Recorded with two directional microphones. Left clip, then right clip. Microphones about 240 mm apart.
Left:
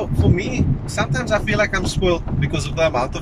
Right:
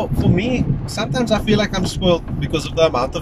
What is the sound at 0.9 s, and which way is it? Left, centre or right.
Speech, centre.